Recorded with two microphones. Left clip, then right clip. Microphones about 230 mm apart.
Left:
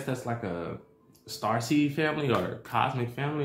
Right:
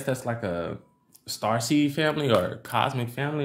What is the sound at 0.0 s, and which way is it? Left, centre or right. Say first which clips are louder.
Speech: right 4 dB; right.